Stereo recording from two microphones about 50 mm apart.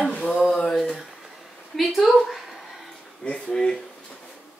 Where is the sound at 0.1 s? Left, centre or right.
Left.